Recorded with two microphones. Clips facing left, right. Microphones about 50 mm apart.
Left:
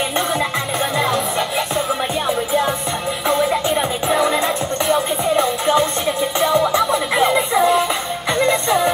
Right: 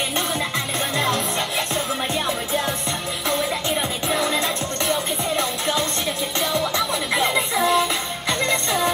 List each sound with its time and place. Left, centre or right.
0.9 s music: centre
2.2 s music: centre
3.7 s music: centre
4.9 s music: centre
6.8 s music: centre